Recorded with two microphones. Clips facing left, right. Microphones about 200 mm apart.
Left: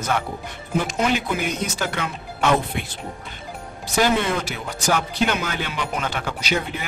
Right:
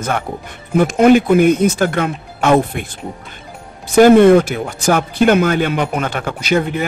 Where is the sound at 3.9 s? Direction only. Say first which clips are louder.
Right 14 dB; 50° right (ahead or behind).